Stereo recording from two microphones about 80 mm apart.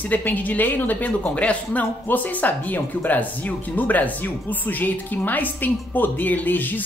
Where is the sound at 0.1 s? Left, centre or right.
Left.